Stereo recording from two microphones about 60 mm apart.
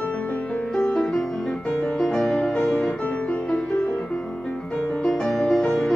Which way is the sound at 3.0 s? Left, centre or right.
Left.